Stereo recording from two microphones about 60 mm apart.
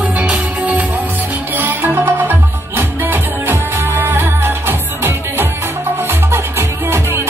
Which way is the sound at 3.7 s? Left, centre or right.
Right.